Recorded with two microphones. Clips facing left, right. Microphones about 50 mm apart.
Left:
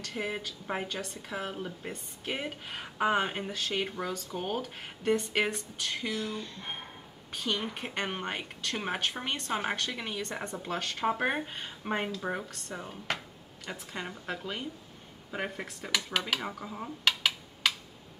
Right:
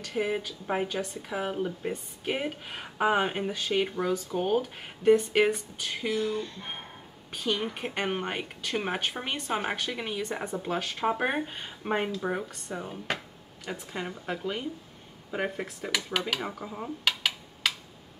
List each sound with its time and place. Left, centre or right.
0.0 s speech: centre